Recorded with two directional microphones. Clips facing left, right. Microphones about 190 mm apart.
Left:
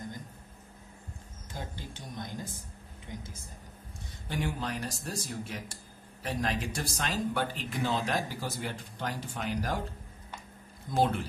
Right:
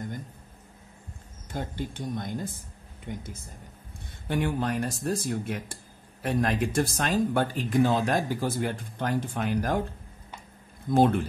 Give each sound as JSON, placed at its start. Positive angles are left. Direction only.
{"t": 1.5, "sound": "speech", "side_deg": -55}
{"t": 4.3, "sound": "speech", "side_deg": -55}
{"t": 10.9, "sound": "speech", "side_deg": -55}